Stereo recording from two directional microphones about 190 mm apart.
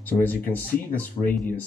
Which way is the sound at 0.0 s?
10° left (ahead or behind).